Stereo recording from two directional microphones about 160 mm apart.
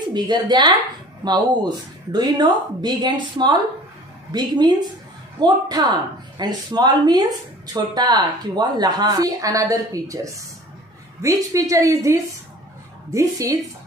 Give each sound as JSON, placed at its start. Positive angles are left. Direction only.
{"t": 0.0, "sound": "a woman's voice", "side_deg": -25}
{"t": 11.2, "sound": "a woman's voice", "side_deg": -20}